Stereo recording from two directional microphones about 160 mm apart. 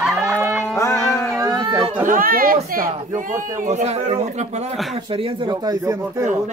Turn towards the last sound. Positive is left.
turn(degrees=-20)  # may be behind; listen again after turning